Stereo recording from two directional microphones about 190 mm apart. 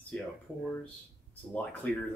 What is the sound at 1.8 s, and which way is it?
Speech, 10° left (ahead or behind).